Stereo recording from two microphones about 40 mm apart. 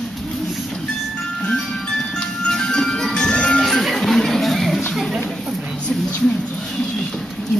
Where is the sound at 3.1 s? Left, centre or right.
Left.